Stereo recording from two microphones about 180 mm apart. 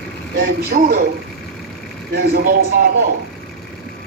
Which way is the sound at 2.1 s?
55° right (ahead or behind).